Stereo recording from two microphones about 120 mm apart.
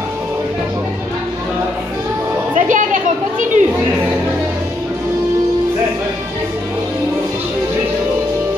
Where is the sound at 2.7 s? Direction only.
90° right.